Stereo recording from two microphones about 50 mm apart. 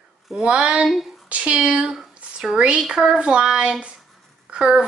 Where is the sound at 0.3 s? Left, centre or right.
Right.